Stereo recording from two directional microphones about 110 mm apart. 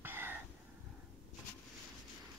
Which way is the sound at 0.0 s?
20° right (ahead or behind).